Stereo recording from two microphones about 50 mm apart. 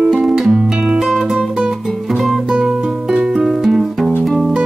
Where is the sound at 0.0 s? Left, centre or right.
Centre.